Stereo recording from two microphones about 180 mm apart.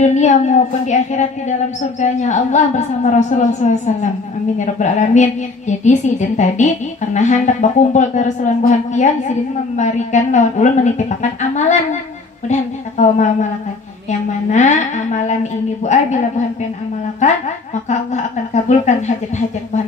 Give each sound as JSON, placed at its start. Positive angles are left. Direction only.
{"t": 0.0, "sound": "a woman's voice", "side_deg": 40}
{"t": 14.5, "sound": "a woman's voice", "side_deg": 40}